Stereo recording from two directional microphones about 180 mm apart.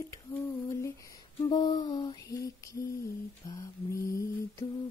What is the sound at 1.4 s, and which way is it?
Speech, 25° left (ahead or behind).